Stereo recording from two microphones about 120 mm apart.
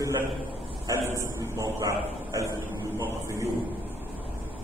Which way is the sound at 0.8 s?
25° right (ahead or behind).